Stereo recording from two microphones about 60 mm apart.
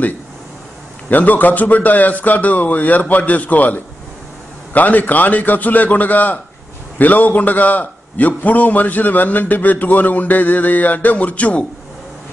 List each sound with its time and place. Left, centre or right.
1.1 s a man's voice: left